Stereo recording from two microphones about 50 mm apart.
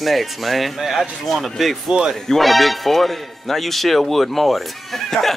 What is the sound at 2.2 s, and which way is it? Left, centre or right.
Speech, centre.